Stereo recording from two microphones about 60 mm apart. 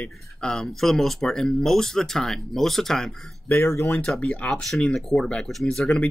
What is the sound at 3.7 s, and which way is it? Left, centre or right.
Speech, left.